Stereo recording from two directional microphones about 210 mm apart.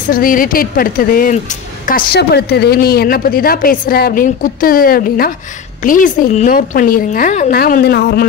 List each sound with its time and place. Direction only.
0.1 s a woman's voice: 40° left (ahead or behind)